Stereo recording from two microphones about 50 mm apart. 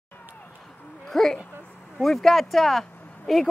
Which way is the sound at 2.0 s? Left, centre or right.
Centre.